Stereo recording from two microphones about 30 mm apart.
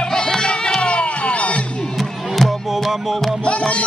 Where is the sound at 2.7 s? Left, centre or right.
Centre.